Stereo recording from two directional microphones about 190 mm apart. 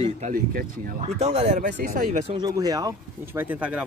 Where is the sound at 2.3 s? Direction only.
20° right (ahead or behind).